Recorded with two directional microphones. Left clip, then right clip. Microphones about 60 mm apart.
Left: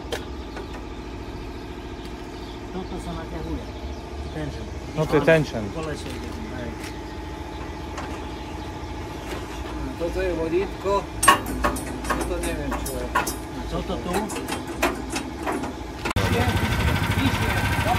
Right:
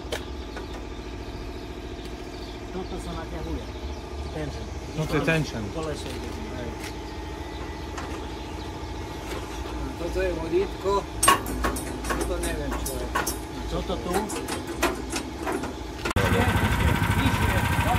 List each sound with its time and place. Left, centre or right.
5.3 s speech: right
10.0 s a sound: right
12.7 s vehicle: right